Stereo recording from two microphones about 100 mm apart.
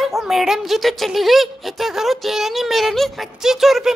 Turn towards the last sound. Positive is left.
turn(degrees=-5)  # may be behind; listen again after turning